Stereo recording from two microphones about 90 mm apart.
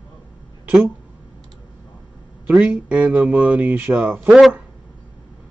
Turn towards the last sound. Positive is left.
turn(degrees=-5)  # may be behind; listen again after turning